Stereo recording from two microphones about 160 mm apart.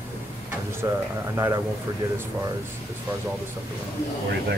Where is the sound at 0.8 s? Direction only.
20° right (ahead or behind).